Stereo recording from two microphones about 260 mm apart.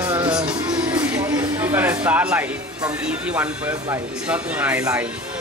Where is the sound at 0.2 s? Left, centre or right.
Centre.